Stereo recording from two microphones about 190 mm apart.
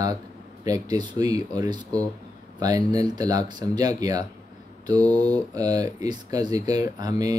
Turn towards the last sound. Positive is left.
turn(degrees=-20)  # may be behind; listen again after turning